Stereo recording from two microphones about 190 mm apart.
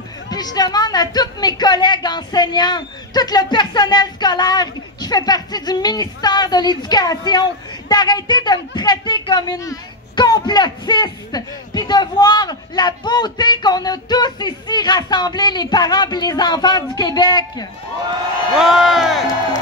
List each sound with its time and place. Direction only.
0.3 s a woman's voice: 20° left (ahead or behind)
18.6 s speech: centre (ahead or behind)